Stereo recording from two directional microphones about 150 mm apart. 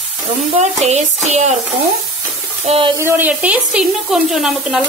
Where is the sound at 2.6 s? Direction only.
40° right (ahead or behind).